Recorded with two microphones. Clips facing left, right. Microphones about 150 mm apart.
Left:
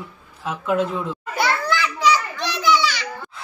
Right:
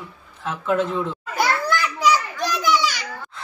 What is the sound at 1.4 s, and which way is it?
Children playing, 45° right (ahead or behind).